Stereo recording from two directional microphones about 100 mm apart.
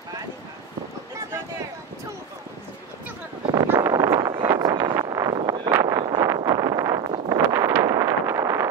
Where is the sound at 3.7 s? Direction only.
35° right (ahead or behind).